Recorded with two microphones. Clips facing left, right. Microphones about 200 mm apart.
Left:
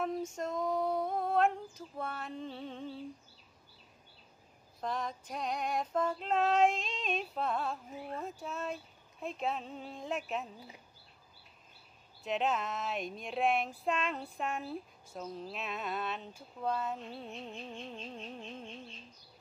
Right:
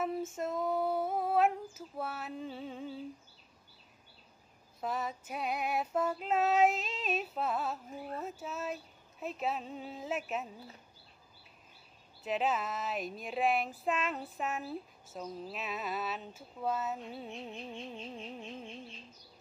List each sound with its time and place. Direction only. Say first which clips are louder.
0.0 s female singing: right 1 dB; 5° right (ahead or behind)
4.7 s speech: right 1 dB; 5° right (ahead or behind)
12.2 s speech: even; 5° right (ahead or behind)